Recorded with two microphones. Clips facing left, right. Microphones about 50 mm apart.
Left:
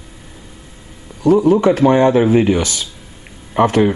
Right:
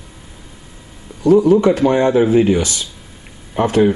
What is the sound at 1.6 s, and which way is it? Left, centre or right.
Speech, centre.